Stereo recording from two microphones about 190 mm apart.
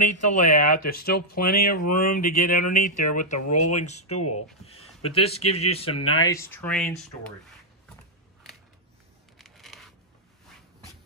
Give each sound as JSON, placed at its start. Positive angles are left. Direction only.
{"t": 0.0, "sound": "a man's voice", "side_deg": 40}
{"t": 6.3, "sound": "speech", "side_deg": 10}
{"t": 9.4, "sound": "a sound", "side_deg": 0}